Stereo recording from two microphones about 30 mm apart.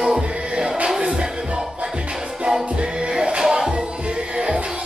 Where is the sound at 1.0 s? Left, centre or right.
Right.